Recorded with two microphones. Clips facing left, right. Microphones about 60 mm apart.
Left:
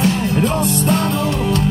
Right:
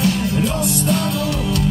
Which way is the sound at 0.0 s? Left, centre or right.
Left.